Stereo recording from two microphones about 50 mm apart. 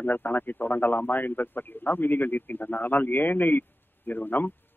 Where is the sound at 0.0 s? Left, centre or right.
Left.